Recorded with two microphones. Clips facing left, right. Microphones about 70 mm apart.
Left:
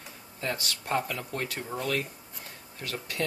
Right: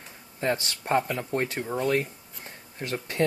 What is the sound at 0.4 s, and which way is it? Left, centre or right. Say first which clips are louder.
Speech: right 6 dB; right.